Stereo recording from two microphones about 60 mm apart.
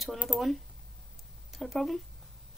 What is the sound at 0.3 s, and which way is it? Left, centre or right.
Speech, right.